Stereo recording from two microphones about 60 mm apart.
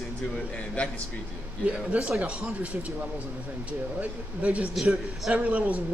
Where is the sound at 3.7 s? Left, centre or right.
Right.